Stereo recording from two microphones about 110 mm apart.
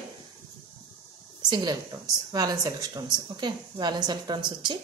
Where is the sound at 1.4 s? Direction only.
40° right (ahead or behind).